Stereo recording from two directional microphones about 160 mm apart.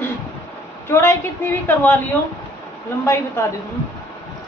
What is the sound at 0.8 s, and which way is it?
A man's voice, 15° left (ahead or behind).